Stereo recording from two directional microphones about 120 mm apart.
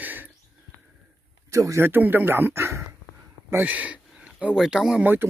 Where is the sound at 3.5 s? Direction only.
15° right (ahead or behind).